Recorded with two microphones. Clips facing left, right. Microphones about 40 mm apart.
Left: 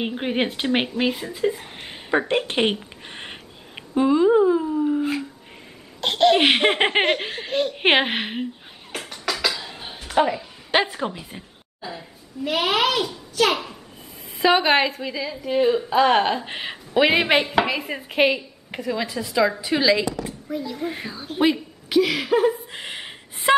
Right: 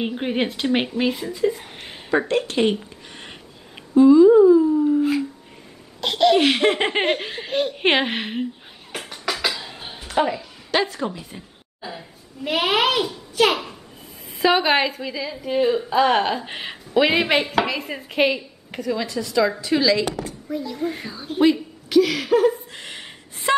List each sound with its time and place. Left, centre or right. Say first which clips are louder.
0.0 s a woman's voice: even; centre
1.6 s a sound: even; centre
2.0 s a sound: right 1 dB; left
4.6 s a sound: right 4 dB; centre
5.9 s laughter: even; centre
6.3 s laughter: even; left
7.1 s a woman's voice: even; centre
8.9 s music: even; centre
10.7 s laughter: left 1 dB; centre
11.8 s a child's voice: even; centre
20.4 s speech: right 2 dB; centre